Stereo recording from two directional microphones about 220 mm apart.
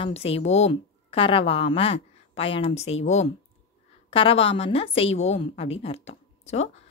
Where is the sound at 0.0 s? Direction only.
25° left (ahead or behind).